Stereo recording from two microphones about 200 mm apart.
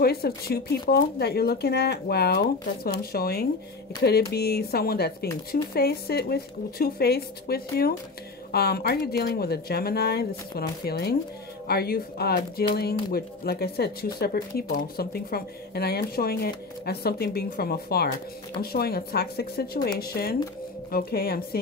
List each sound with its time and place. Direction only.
0.0 s speech: 50° left (ahead or behind)